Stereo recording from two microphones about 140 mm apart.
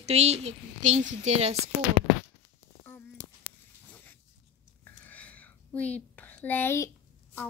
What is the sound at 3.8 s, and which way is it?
Zipper, 15° left (ahead or behind).